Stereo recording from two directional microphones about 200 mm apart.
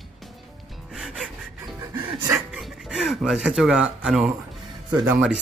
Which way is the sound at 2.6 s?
Centre (ahead or behind).